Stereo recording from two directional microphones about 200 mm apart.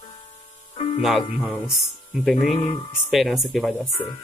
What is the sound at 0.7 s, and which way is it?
Music, 30° left (ahead or behind).